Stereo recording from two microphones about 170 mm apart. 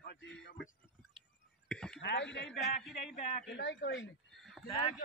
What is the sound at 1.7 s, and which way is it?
Throat clearing, 5° left (ahead or behind).